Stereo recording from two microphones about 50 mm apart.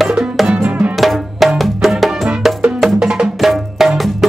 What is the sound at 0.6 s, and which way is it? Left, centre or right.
Music, right.